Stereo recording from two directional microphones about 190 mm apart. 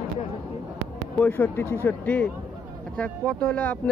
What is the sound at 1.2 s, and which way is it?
Speech, 10° left (ahead or behind).